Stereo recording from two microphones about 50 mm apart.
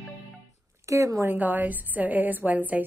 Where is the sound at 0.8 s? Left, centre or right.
Right.